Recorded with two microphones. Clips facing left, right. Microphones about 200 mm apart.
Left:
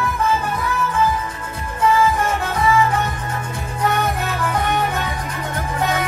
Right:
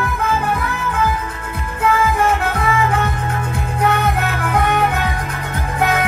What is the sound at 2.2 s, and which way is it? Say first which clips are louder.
Music: right 2 dB; 55° right (ahead or behind).